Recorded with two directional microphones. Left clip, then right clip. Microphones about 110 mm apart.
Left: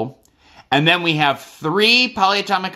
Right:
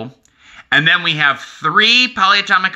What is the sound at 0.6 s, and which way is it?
Speech, 40° left (ahead or behind).